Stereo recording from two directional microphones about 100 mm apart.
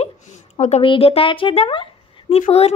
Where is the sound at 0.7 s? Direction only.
65° left (ahead or behind).